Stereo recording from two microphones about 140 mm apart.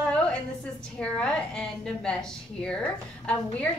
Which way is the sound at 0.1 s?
10° left (ahead or behind).